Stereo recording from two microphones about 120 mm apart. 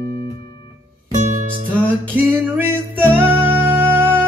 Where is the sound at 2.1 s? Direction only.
15° right (ahead or behind).